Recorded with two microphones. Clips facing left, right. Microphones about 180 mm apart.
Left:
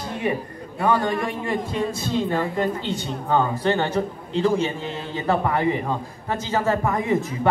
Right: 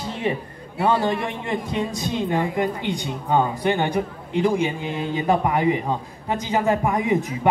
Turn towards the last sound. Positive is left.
turn(degrees=-15)  # may be behind; listen again after turning